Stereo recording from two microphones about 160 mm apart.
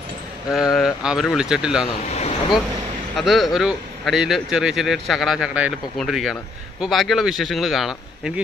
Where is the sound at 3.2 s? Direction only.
Centre (ahead or behind).